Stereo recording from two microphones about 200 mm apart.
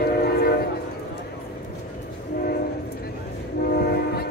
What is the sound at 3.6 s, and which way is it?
Train, 50° left (ahead or behind).